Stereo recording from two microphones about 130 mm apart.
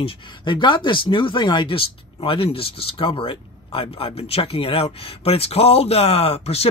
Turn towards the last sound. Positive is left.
turn(degrees=50)  # may be behind; listen again after turning